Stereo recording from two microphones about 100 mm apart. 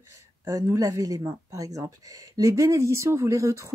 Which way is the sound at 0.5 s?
35° right (ahead or behind).